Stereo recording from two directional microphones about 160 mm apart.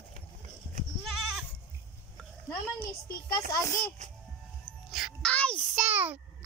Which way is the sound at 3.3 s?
20° left (ahead or behind).